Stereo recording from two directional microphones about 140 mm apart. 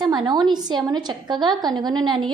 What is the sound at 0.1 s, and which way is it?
A woman's voice, 30° right (ahead or behind).